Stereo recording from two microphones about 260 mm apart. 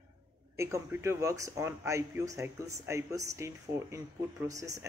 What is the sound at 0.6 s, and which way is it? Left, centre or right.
Speech, centre.